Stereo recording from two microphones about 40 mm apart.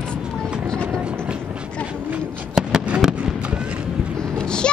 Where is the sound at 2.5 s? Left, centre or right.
Centre.